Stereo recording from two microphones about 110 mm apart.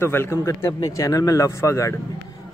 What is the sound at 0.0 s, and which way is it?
Speech, 20° left (ahead or behind).